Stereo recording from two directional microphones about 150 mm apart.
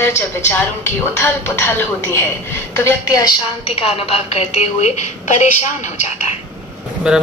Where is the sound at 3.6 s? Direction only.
40° left (ahead or behind).